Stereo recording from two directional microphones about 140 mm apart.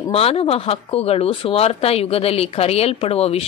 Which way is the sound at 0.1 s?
45° left (ahead or behind).